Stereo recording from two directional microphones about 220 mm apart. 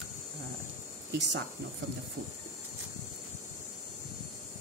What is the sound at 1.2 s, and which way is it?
Speech, 50° right (ahead or behind).